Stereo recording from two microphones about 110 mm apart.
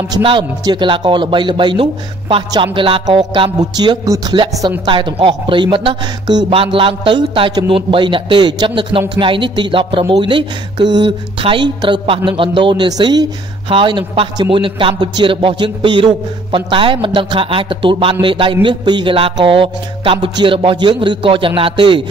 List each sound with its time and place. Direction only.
0.2 s speech: 50° right (ahead or behind)
4.8 s speech: 50° right (ahead or behind)
13.7 s speech: 50° right (ahead or behind)